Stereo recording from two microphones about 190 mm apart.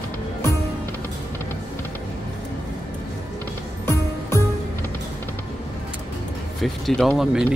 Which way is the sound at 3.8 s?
15° left (ahead or behind).